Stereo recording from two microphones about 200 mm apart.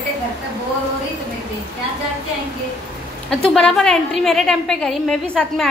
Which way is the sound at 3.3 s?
5° left (ahead or behind).